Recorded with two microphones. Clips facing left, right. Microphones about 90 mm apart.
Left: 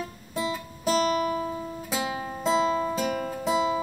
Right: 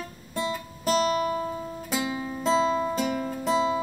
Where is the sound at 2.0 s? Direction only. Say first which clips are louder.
Left 1 dB; 30° left (ahead or behind).